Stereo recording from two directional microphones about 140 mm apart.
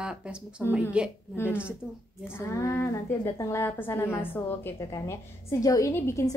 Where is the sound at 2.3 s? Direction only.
15° left (ahead or behind).